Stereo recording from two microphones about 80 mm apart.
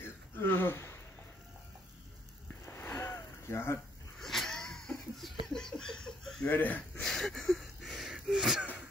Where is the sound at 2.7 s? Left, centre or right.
Left.